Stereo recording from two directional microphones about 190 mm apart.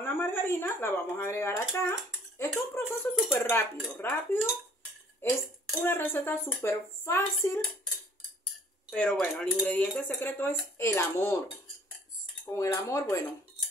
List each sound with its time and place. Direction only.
0.0 s speech: 10° left (ahead or behind)
8.9 s speech: 5° left (ahead or behind)
12.4 s speech: 15° left (ahead or behind)